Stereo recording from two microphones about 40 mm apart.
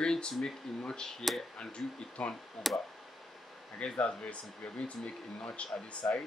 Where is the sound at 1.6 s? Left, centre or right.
Left.